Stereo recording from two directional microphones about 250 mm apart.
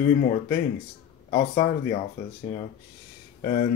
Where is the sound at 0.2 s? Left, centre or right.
Left.